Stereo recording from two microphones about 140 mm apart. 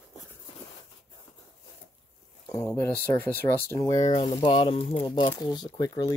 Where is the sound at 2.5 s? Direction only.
20° left (ahead or behind).